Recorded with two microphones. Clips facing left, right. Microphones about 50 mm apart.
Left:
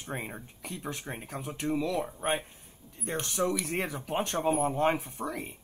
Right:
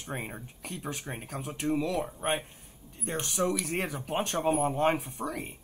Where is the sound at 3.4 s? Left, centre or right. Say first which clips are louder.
Even; centre.